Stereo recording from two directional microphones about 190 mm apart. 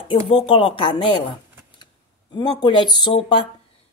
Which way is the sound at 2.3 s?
25° left (ahead or behind).